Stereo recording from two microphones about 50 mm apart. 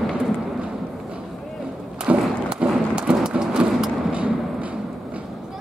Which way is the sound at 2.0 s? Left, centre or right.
Right.